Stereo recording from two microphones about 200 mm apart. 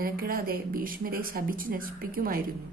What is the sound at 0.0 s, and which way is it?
A woman's voice, 45° right (ahead or behind).